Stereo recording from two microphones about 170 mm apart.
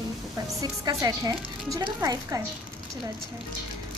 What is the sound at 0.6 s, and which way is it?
Speech, 20° right (ahead or behind).